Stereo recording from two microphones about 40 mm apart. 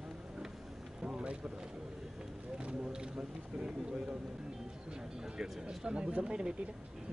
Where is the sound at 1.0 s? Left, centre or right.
Right.